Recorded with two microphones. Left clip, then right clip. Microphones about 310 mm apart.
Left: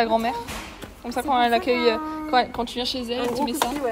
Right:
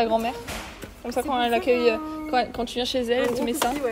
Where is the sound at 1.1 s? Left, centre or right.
Left.